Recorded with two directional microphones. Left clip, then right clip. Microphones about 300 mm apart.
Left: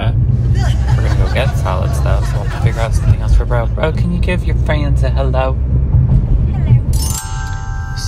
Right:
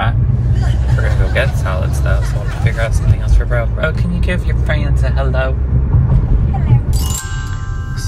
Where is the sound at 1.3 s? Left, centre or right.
Centre.